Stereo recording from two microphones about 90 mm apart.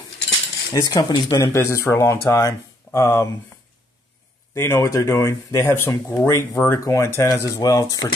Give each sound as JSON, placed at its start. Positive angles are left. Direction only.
{"t": 0.7, "sound": "speech", "side_deg": 50}
{"t": 1.6, "sound": "speech", "side_deg": 30}
{"t": 4.6, "sound": "speech", "side_deg": 30}